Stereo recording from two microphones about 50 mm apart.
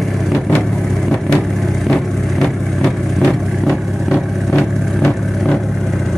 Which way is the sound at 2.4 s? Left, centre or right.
Centre.